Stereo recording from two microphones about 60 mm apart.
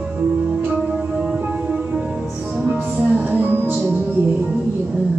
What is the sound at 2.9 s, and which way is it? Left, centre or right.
Music, right.